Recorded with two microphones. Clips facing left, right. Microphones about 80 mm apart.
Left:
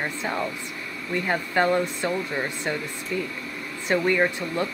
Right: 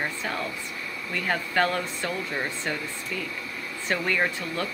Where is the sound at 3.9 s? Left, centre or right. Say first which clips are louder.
Left 5 dB; centre.